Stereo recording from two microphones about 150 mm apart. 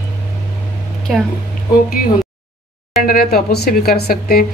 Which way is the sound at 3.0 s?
80° left.